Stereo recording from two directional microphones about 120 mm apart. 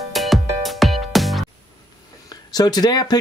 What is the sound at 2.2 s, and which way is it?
Speech, 35° left (ahead or behind).